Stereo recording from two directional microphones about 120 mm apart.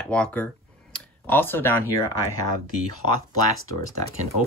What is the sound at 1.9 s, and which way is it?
Speech, 25° left (ahead or behind).